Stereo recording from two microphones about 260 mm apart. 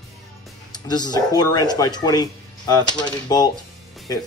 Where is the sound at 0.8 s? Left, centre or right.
Centre.